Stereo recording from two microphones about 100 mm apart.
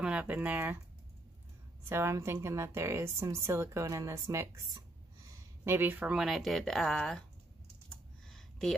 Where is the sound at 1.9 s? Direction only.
25° right (ahead or behind).